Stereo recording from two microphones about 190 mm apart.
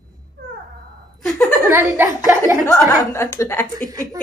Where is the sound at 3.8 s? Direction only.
20° right (ahead or behind).